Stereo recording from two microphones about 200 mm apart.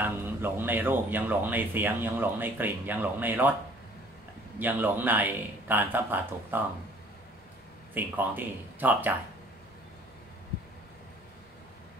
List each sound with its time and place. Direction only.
0.0 s speech: 10° right (ahead or behind)
4.6 s speech: 10° right (ahead or behind)
7.9 s speech: 10° right (ahead or behind)